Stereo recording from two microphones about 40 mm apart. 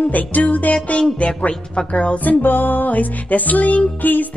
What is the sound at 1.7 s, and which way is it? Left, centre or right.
Speech, left.